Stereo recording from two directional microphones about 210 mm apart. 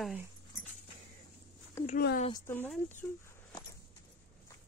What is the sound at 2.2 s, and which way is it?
Speech, 20° left (ahead or behind).